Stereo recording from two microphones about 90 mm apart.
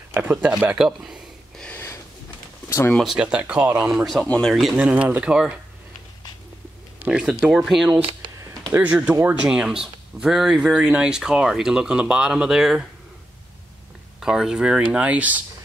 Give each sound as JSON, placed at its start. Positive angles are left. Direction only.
{"t": 0.1, "sound": "speech", "side_deg": -20}
{"t": 0.7, "sound": "speech", "side_deg": -10}
{"t": 2.9, "sound": "speech", "side_deg": 0}
{"t": 3.2, "sound": "speech", "side_deg": -10}
{"t": 4.7, "sound": "speech", "side_deg": -15}
{"t": 7.0, "sound": "speech", "side_deg": -10}
{"t": 8.7, "sound": "speech", "side_deg": -15}
{"t": 14.2, "sound": "speech", "side_deg": -5}